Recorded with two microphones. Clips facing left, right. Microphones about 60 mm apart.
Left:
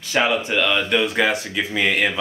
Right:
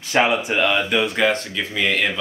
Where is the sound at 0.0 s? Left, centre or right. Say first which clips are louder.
Right 2 dB; right.